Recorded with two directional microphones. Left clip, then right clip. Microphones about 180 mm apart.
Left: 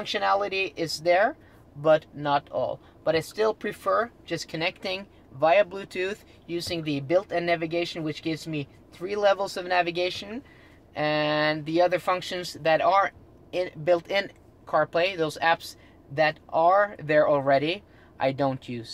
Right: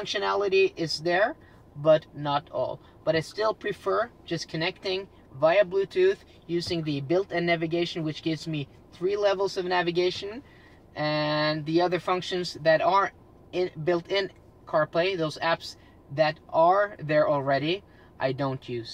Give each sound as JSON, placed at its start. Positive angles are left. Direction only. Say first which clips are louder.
{"t": 0.0, "sound": "speech", "louder": "left 2 dB", "side_deg": 50}